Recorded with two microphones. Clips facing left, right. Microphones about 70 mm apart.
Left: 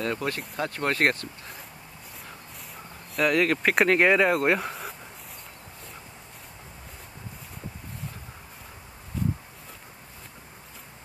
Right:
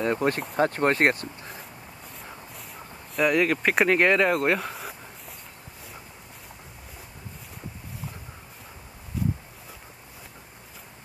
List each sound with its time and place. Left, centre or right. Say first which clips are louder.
0.0 s speech: right 5 dB; right
3.2 s speech: right 1 dB; centre